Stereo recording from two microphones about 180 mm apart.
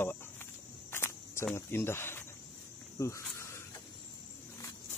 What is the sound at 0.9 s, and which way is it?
Cricket, 15° left (ahead or behind).